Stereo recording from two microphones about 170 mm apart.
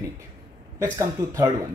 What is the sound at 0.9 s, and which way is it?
Speech, 15° right (ahead or behind).